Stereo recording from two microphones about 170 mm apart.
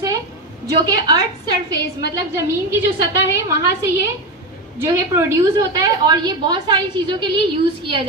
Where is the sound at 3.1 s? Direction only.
15° right (ahead or behind).